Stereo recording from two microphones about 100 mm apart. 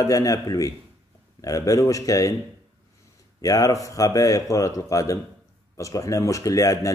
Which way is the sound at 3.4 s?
35° left (ahead or behind).